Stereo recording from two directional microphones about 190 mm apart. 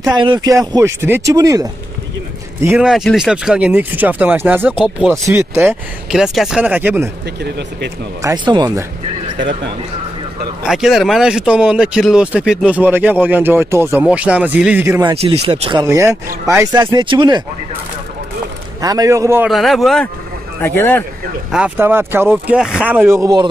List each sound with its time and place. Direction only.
0.1 s speech: 25° right (ahead or behind)
2.6 s speech: 10° right (ahead or behind)
4.8 s speech: centre (ahead or behind)
5.2 s speech: 15° right (ahead or behind)
6.1 s speech: centre (ahead or behind)
8.2 s speech: 20° right (ahead or behind)
10.7 s speech: centre (ahead or behind); by 15.8 s 30° right (ahead or behind)
15.8 s speech: 15° right (ahead or behind)
16.8 s speech: 25° right (ahead or behind)
18.8 s speech: 20° right (ahead or behind)
19.5 s speech: centre (ahead or behind)
20.6 s a man's voice: 10° left (ahead or behind)
21.5 s speech: 5° right (ahead or behind)